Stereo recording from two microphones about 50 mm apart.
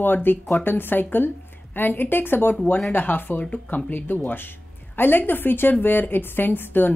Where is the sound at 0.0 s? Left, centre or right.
Left.